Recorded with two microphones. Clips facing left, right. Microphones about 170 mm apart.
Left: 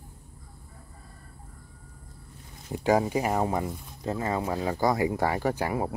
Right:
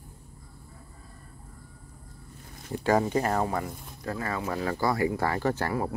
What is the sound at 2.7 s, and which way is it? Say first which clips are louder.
Speech: left 1 dB; 15° left (ahead or behind).